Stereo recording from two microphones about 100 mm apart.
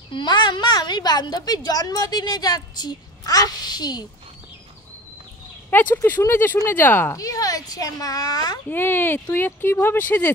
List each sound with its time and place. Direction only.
0.1 s a woman's voice: 50° left (ahead or behind)
5.7 s speech: 20° left (ahead or behind)
7.2 s a child's voice: 35° left (ahead or behind)
8.6 s speech: 20° left (ahead or behind)